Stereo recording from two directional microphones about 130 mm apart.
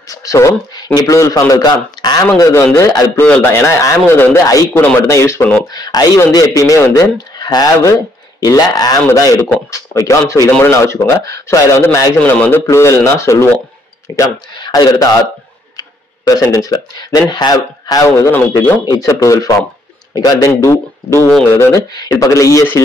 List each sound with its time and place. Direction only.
0.1 s speech: 25° left (ahead or behind)
3.2 s speech: 15° left (ahead or behind)
12.2 s speech: 15° left (ahead or behind)
16.5 s speech: 25° left (ahead or behind)